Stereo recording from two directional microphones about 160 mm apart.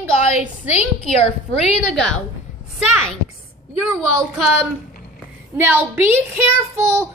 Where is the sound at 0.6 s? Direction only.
40° left (ahead or behind).